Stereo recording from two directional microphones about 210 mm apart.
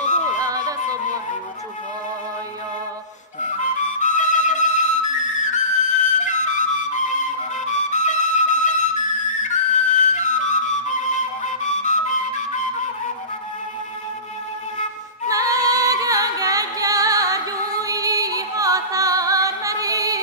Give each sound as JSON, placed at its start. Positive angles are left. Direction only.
{"t": 0.0, "sound": "music", "side_deg": 35}
{"t": 3.3, "sound": "flute", "side_deg": 35}
{"t": 15.2, "sound": "music", "side_deg": -15}